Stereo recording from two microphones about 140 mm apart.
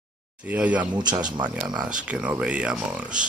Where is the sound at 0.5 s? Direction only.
10° right (ahead or behind).